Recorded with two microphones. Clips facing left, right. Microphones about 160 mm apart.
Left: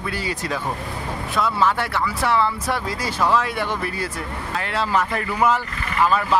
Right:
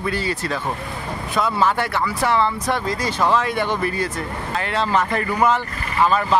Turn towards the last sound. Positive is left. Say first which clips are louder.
# right 1 dB
turn(degrees=0)  # may be behind; listen again after turning